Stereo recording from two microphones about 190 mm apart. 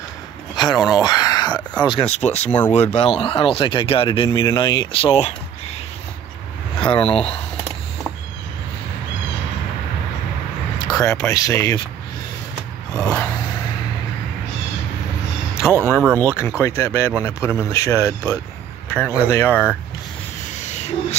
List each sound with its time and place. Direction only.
0.6 s speech: 20° left (ahead or behind)
1.0 s a sound: 20° left (ahead or behind)
1.8 s speech: 25° left (ahead or behind)
6.9 s speech: 30° left (ahead or behind)
10.9 s speech: 15° left (ahead or behind)
12.9 s a sound: 15° left (ahead or behind)
15.7 s speech: 15° right (ahead or behind)
16.3 s speech: centre (ahead or behind)
16.6 s speech: 15° left (ahead or behind)
20.5 s a sound: 35° left (ahead or behind)